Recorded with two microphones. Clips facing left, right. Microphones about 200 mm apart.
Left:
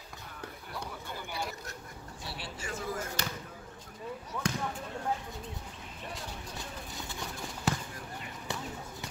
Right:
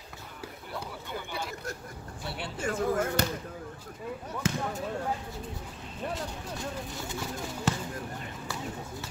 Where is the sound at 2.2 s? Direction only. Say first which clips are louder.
Right 8 dB; 55° right (ahead or behind).